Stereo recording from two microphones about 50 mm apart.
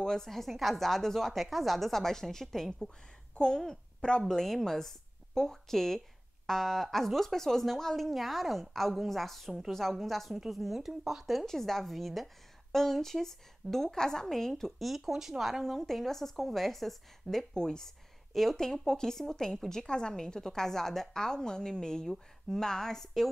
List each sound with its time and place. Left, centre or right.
0.0 s a woman's voice: centre
4.2 s a woman's voice: centre